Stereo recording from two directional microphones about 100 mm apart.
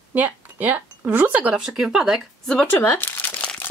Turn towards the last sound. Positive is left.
turn(degrees=15)  # may be behind; listen again after turning